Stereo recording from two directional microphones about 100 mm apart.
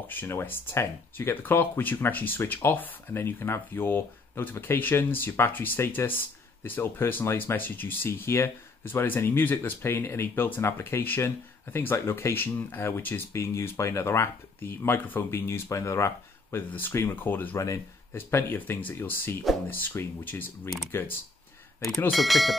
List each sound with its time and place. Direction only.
0.1 s speech: 20° left (ahead or behind)
22.1 s speech: centre (ahead or behind)